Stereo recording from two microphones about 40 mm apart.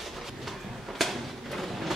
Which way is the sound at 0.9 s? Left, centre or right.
Centre.